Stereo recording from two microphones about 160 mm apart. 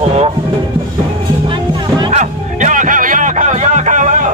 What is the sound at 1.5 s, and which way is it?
Music, 30° right (ahead or behind).